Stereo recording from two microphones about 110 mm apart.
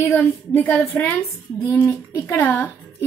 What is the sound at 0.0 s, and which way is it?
A woman's voice, 25° left (ahead or behind).